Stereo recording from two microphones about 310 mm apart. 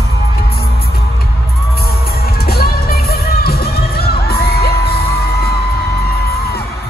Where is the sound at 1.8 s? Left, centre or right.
Left.